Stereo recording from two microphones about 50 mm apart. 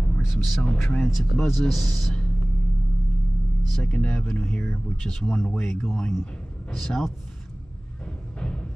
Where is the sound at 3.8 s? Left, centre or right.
Centre.